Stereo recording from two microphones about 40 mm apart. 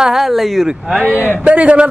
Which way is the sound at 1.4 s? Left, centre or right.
Right.